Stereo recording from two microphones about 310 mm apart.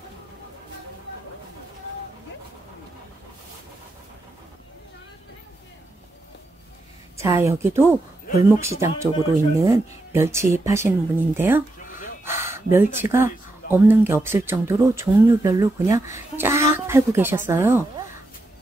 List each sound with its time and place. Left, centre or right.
7.2 s speech: centre
12.3 s a sound: centre
13.0 s speech: centre